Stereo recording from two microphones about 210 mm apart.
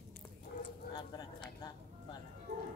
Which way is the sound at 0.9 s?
20° left (ahead or behind).